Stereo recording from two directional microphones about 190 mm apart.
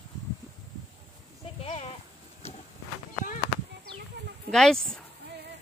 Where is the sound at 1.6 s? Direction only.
30° left (ahead or behind).